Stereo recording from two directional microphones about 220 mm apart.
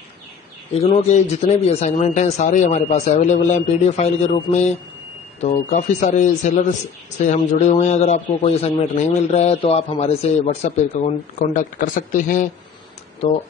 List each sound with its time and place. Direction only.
0.7 s a man's voice: 30° left (ahead or behind)